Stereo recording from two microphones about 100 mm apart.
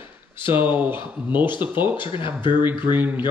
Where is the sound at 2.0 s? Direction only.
60° left (ahead or behind).